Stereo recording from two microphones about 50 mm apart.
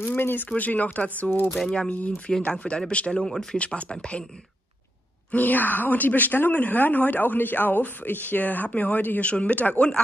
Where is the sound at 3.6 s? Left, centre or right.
Left.